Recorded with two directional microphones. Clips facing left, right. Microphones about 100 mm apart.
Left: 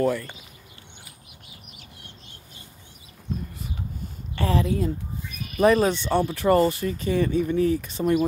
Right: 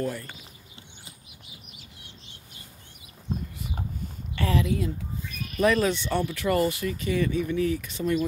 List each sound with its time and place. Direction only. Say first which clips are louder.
4.4 s speech: left 2 dB; 35° left (ahead or behind)